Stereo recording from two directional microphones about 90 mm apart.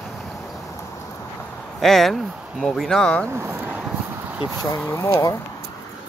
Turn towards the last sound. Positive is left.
turn(degrees=35)  # may be behind; listen again after turning